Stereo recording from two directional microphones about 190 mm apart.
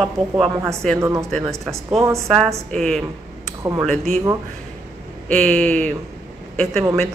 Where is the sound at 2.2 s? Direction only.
Centre (ahead or behind).